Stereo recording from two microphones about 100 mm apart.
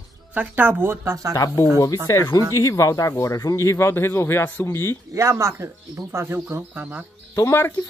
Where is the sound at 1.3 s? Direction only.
35° left (ahead or behind).